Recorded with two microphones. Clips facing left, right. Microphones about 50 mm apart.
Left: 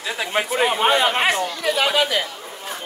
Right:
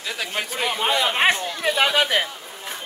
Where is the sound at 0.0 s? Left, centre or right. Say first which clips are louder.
Left 5 dB; left.